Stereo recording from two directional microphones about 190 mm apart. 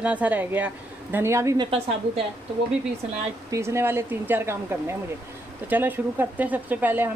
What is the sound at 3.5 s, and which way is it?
A woman's voice, 15° right (ahead or behind).